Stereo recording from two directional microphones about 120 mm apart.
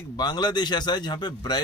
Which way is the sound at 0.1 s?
35° left (ahead or behind).